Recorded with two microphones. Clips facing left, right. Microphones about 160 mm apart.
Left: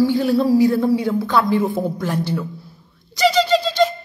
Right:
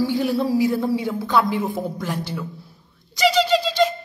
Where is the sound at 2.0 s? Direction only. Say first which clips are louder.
Left 5 dB; 5° right (ahead or behind).